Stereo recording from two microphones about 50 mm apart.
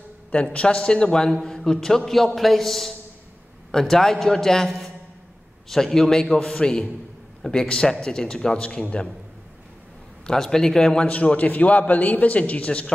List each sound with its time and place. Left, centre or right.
0.3 s a man's voice: left
8.6 s a man's voice: left
10.2 s a man's voice: centre
11.1 s a man's voice: left